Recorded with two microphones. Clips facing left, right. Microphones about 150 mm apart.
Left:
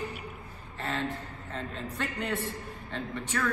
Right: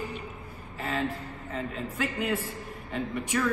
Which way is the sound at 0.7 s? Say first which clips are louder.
Right 2 dB; 10° right (ahead or behind).